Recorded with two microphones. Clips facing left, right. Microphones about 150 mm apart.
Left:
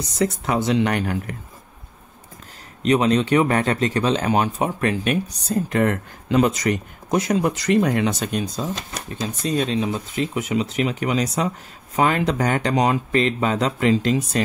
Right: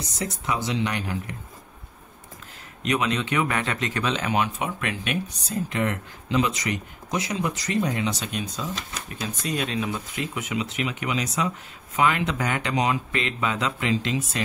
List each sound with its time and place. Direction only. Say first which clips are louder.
0.5 s speech: left 4 dB; 55° left (ahead or behind)
2.8 s speech: left 7 dB; 35° left (ahead or behind)